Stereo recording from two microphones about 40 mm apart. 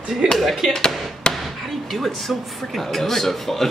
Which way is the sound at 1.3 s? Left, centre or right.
Left.